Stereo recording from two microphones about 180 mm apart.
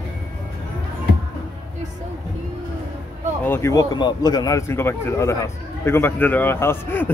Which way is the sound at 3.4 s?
15° left (ahead or behind).